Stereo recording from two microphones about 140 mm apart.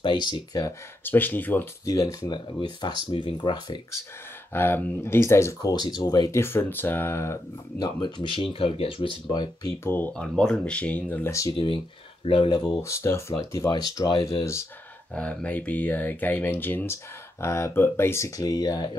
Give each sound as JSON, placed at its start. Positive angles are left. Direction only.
{"t": 0.0, "sound": "speech", "side_deg": 30}
{"t": 1.0, "sound": "speech", "side_deg": 15}
{"t": 1.9, "sound": "speech", "side_deg": 25}
{"t": 3.1, "sound": "speech", "side_deg": 35}
{"t": 4.5, "sound": "speech", "side_deg": 15}
{"t": 7.8, "sound": "speech", "side_deg": 35}
{"t": 9.8, "sound": "speech", "side_deg": 15}
{"t": 12.3, "sound": "speech", "side_deg": 35}
{"t": 14.4, "sound": "speech", "side_deg": 20}
{"t": 15.1, "sound": "speech", "side_deg": 10}